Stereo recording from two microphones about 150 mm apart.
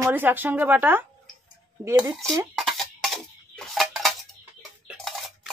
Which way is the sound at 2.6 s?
Centre (ahead or behind).